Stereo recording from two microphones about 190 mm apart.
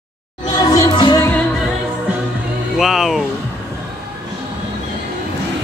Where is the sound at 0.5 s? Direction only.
20° left (ahead or behind).